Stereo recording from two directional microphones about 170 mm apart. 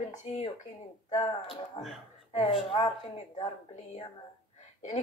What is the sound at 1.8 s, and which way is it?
A woman's voice, 30° left (ahead or behind).